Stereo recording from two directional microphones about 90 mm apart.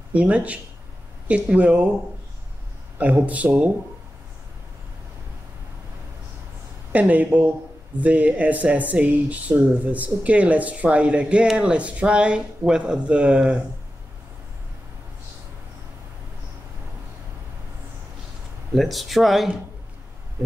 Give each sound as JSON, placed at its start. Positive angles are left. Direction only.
{"t": 0.1, "sound": "speech", "side_deg": -15}
{"t": 3.0, "sound": "speech", "side_deg": -15}
{"t": 6.9, "sound": "speech", "side_deg": -15}
{"t": 18.8, "sound": "speech", "side_deg": 0}